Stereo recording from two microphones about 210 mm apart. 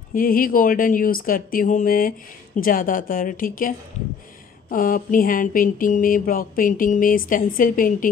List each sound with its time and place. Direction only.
0.1 s speech: 40° left (ahead or behind)